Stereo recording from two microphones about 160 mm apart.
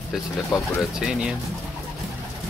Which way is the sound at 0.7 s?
5° right (ahead or behind).